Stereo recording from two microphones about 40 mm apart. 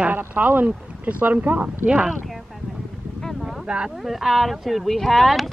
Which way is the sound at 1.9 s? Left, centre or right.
Right.